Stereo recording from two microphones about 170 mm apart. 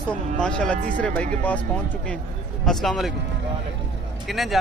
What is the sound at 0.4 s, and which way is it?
Speech, 5° left (ahead or behind).